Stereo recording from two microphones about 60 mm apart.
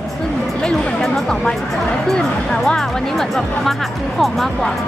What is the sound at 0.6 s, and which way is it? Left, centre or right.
Chatter, centre.